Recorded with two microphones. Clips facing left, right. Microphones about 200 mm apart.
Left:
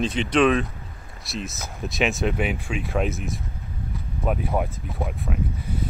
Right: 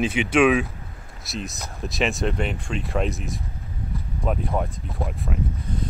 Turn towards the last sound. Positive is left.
turn(degrees=0)  # may be behind; listen again after turning